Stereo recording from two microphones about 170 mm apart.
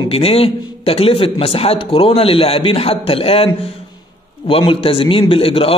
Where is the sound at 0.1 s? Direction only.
35° left (ahead or behind).